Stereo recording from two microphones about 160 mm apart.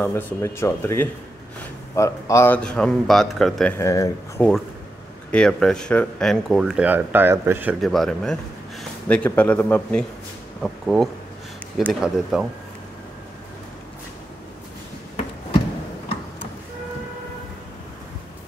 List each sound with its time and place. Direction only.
0.0 s speech: 15° left (ahead or behind)
3.7 s speech: 20° left (ahead or behind)
5.3 s speech: 5° left (ahead or behind); by 7.7 s 15° right (ahead or behind)
7.8 s speech: centre (ahead or behind)